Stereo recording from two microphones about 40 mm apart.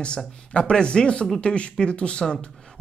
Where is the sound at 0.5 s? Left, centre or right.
Left.